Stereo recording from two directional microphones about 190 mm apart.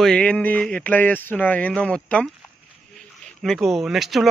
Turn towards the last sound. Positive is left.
turn(degrees=0)  # may be behind; listen again after turning